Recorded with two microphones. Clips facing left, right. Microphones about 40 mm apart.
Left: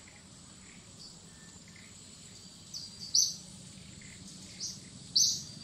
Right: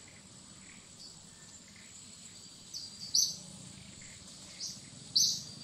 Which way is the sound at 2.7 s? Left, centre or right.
Centre.